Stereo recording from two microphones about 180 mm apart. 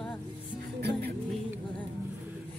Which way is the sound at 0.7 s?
65° right (ahead or behind).